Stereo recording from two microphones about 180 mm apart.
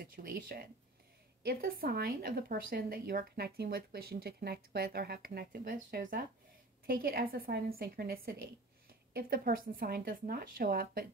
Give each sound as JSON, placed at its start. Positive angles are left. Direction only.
{"t": 0.0, "sound": "speech", "side_deg": -55}